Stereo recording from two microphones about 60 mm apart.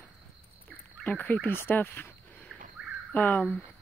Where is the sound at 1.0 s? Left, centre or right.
Left.